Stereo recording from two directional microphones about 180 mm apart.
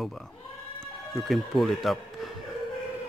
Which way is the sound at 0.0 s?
Centre (ahead or behind).